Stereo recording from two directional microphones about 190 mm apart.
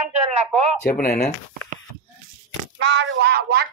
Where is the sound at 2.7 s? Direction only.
75° right (ahead or behind); by 3.6 s 55° right (ahead or behind).